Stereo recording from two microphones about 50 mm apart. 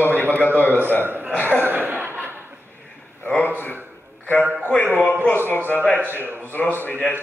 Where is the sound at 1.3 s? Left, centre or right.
Left.